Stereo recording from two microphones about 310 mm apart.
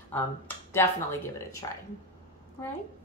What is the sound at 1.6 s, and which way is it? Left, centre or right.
Speech, centre.